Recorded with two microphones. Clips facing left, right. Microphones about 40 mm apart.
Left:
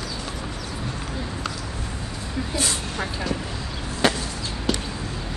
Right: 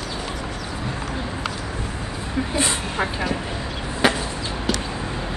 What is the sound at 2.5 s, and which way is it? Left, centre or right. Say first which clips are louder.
Speech: right 3 dB; right.